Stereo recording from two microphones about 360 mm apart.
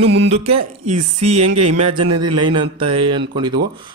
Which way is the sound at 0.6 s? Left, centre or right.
Right.